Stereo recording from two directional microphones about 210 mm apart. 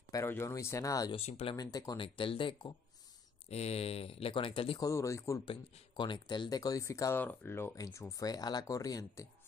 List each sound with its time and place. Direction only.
0.1 s speech: 10° left (ahead or behind)
1.2 s speech: 30° left (ahead or behind)